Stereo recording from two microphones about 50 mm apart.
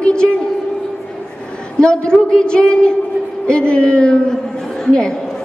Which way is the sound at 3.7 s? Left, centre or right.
Left.